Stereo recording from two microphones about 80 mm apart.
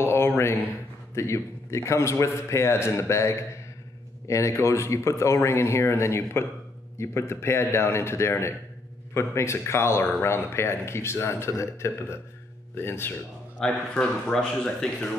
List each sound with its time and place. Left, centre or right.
0.0 s a sound: left
1.1 s speech: left
13.6 s speech: centre